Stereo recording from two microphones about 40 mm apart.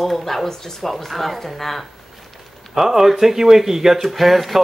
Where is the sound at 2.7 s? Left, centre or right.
Centre.